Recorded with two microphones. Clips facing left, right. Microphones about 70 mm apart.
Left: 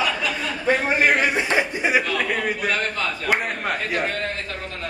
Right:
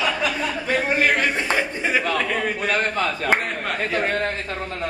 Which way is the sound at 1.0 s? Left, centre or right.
Centre.